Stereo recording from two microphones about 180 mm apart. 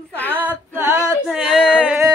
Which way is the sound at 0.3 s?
10° right (ahead or behind).